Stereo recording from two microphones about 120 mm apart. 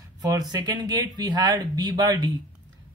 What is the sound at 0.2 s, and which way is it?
Speech, 30° right (ahead or behind).